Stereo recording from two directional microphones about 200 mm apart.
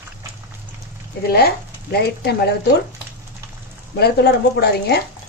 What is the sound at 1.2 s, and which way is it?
Speech, 50° left (ahead or behind).